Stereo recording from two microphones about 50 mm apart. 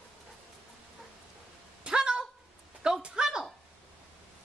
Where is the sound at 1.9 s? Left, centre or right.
Centre.